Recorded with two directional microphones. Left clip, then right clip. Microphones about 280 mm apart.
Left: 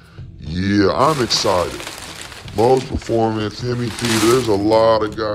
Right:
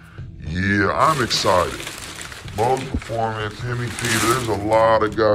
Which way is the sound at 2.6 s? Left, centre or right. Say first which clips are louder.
Left 5 dB; left.